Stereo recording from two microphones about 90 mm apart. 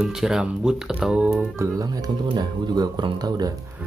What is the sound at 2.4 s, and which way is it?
Speech, 45° right (ahead or behind).